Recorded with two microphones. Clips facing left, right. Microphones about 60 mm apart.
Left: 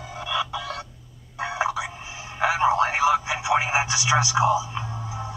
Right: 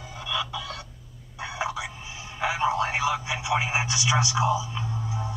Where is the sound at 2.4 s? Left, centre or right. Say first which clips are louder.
Left 5 dB; centre.